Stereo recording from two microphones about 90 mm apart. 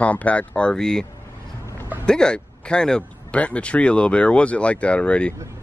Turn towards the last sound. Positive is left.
turn(degrees=10)  # may be behind; listen again after turning